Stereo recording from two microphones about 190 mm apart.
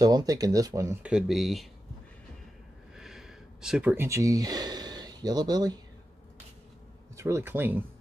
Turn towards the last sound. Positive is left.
turn(degrees=-10)  # may be behind; listen again after turning